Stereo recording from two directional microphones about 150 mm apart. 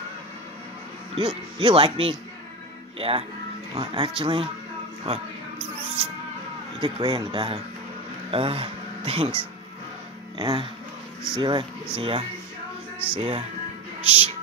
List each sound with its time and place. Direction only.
1.1 s speech: 40° right (ahead or behind)
5.0 s mouse: 40° right (ahead or behind)
6.8 s speech: 35° right (ahead or behind)